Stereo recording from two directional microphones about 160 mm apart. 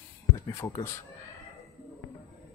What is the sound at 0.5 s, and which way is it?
Speech, 15° left (ahead or behind).